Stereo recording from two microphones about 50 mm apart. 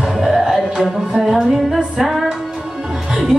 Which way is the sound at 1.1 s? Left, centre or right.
Centre.